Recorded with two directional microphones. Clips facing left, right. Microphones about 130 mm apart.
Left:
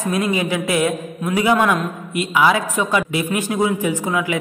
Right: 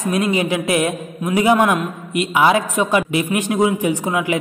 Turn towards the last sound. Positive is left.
turn(degrees=-20)  # may be behind; listen again after turning